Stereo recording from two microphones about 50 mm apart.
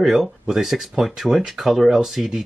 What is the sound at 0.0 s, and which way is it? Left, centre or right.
Speech, centre.